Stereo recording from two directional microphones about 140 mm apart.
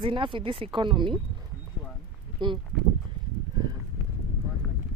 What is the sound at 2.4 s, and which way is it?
Speech, 35° right (ahead or behind).